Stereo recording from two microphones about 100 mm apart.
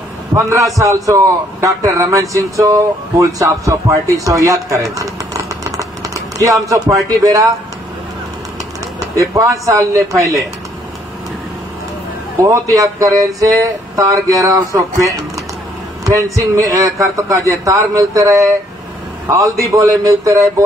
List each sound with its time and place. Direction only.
0.3 s speech: 30° right (ahead or behind)
4.9 s a sound: 30° right (ahead or behind)
9.0 s speech: 35° right (ahead or behind)
12.4 s speech: 35° right (ahead or behind)